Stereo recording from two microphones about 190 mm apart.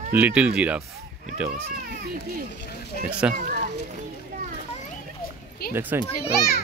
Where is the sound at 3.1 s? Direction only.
5° right (ahead or behind).